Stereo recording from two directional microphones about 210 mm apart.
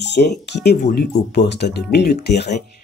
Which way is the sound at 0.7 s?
45° left (ahead or behind).